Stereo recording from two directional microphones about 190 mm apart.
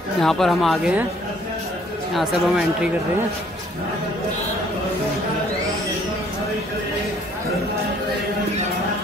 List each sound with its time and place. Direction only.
0.2 s speech: centre (ahead or behind)
2.1 s speech: 5° right (ahead or behind)